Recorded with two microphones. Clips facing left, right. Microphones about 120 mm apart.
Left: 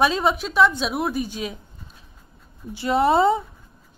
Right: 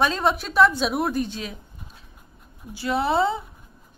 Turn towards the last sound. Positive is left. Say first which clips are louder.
# left 4 dB
turn(degrees=25)  # may be behind; listen again after turning